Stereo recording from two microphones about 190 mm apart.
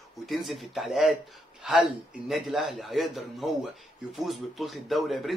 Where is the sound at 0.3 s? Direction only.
Centre (ahead or behind).